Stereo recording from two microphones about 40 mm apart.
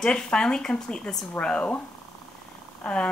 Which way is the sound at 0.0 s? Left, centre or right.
Left.